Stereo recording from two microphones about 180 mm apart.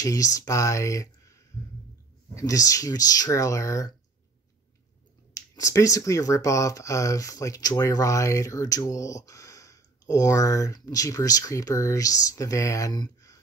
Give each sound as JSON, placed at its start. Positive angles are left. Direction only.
{"t": 0.0, "sound": "speech", "side_deg": 20}
{"t": 2.3, "sound": "speech", "side_deg": 20}
{"t": 5.3, "sound": "speech", "side_deg": 15}